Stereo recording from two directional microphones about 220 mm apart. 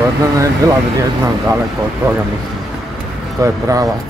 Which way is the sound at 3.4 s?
15° right (ahead or behind).